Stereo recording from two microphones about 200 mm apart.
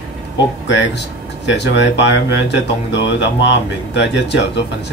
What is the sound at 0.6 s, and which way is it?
Speech, 60° left (ahead or behind).